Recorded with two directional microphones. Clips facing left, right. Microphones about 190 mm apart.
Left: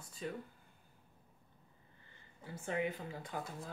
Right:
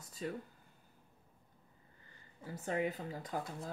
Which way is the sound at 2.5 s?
40° right (ahead or behind).